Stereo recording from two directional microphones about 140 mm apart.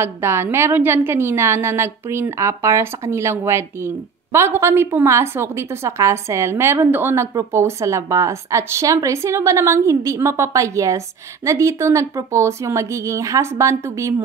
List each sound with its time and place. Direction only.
0.0 s a woman's voice: 20° right (ahead or behind)